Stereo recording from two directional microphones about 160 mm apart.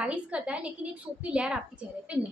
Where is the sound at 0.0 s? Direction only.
10° right (ahead or behind).